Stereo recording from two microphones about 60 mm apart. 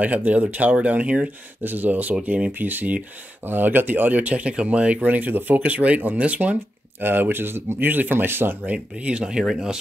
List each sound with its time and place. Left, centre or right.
0.0 s speech: right
7.0 s speech: right
8.6 s speech: centre